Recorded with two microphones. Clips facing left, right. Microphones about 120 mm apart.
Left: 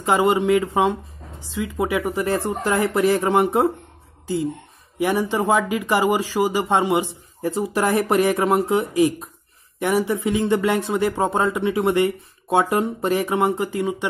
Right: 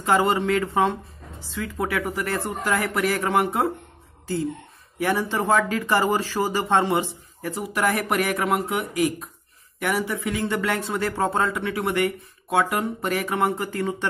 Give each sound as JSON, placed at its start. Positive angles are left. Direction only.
{"t": 0.0, "sound": "speech", "side_deg": 20}
{"t": 4.9, "sound": "speech", "side_deg": 15}
{"t": 7.4, "sound": "speech", "side_deg": 25}